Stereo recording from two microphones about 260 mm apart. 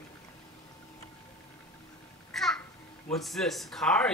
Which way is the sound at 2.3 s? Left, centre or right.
Centre.